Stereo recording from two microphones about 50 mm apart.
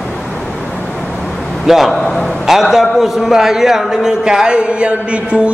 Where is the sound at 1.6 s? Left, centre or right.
Centre.